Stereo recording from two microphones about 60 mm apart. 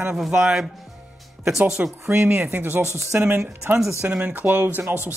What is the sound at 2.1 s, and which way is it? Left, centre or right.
Speech, right.